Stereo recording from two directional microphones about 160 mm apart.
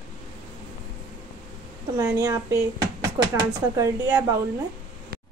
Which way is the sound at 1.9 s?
15° right (ahead or behind).